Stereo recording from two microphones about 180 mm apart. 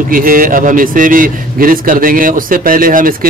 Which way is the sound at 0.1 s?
50° right (ahead or behind).